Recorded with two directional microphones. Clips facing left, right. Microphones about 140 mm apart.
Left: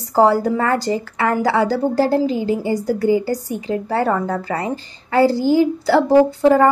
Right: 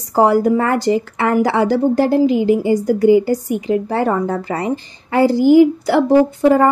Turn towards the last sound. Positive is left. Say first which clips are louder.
# even
turn(degrees=-15)  # may be behind; listen again after turning